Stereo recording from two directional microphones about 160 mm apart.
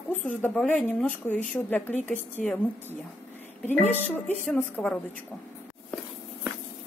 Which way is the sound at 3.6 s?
10° left (ahead or behind).